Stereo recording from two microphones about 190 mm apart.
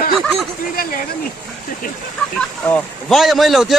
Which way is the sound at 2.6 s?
5° left (ahead or behind).